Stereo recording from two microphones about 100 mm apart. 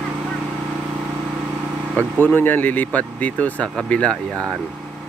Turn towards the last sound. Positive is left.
turn(degrees=10)  # may be behind; listen again after turning